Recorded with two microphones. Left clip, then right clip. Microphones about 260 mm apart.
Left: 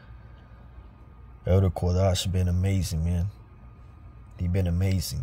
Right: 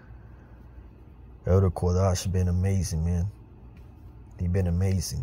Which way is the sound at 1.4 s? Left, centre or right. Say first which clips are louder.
Right 1 dB; centre.